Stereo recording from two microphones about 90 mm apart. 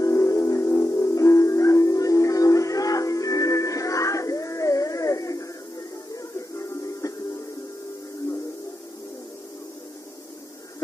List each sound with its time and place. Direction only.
0.0 s music: 35° left (ahead or behind)